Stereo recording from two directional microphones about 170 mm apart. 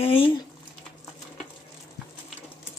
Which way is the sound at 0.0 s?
30° left (ahead or behind).